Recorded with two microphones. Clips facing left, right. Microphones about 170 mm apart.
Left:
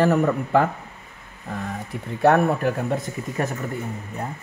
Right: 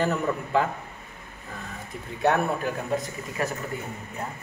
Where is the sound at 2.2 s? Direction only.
60° left (ahead or behind).